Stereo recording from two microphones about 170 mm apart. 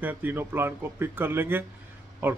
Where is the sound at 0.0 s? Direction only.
10° right (ahead or behind).